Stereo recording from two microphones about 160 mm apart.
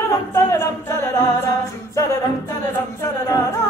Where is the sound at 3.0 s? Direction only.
20° left (ahead or behind).